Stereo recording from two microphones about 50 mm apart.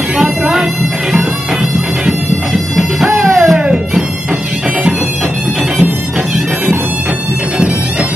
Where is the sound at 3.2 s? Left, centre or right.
Centre.